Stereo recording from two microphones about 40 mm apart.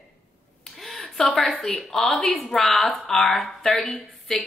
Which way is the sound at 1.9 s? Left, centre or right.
Centre.